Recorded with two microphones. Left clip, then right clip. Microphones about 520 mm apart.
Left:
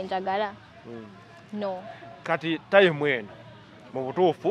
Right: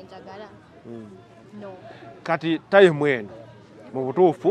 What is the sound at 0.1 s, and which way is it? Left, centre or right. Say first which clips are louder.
Speech: left 14 dB; left.